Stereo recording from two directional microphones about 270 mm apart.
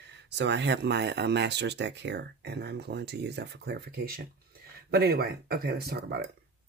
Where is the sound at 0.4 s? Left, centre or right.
Right.